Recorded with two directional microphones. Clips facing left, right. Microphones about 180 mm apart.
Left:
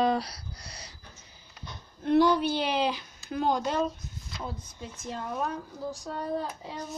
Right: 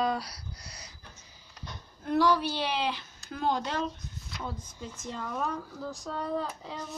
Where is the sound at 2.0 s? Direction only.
20° left (ahead or behind).